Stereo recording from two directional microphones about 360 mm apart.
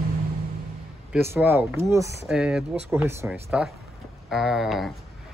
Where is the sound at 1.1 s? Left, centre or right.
Centre.